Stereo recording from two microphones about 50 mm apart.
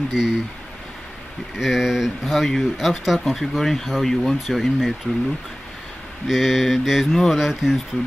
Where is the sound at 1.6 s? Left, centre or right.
Centre.